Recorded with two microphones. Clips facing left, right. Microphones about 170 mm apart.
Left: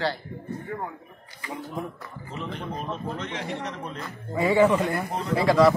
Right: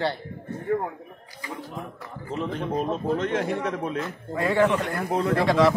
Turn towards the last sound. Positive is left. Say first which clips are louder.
# left 1 dB
turn(degrees=0)  # may be behind; listen again after turning